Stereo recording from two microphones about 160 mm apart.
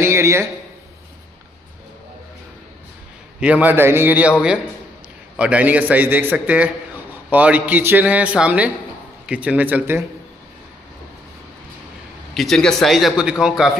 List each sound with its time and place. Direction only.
0.0 s a sound: 15° right (ahead or behind)
3.3 s a man's voice: 5° right (ahead or behind)
12.4 s a man's voice: centre (ahead or behind)